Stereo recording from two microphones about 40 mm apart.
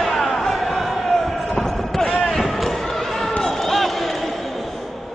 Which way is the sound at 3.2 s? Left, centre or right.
Left.